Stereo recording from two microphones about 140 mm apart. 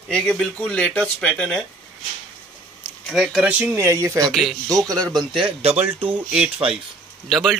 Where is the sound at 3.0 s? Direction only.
Centre (ahead or behind).